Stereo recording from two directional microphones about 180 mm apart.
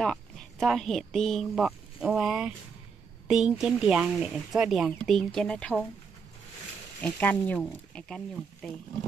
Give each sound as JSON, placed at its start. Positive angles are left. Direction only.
{"t": 0.0, "sound": "speech", "side_deg": 0}
{"t": 7.0, "sound": "speech", "side_deg": 10}